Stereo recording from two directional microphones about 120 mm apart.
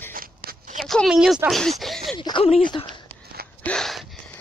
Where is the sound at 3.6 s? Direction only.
5° left (ahead or behind).